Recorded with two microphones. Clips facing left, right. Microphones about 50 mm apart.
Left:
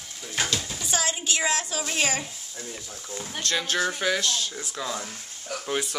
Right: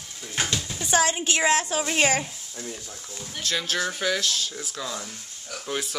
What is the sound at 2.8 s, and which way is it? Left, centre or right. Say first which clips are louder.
Speech: left 3 dB; left.